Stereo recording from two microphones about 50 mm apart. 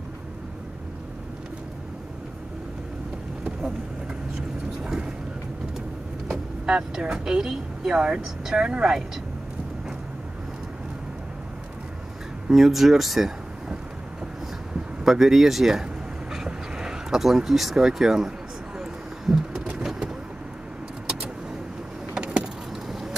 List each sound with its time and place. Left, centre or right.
4.4 s vehicle: centre
6.3 s speech: centre
12.4 s speech: centre
15.0 s speech: centre
18.8 s a sound: centre
22.1 s vehicle: centre